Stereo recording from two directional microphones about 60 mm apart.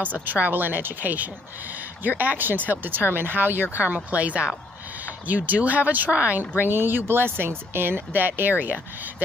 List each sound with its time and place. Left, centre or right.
0.2 s speech: right